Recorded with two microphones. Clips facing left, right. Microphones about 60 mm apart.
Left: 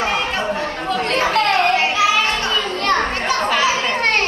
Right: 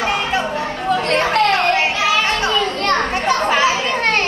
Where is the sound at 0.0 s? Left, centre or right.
Centre.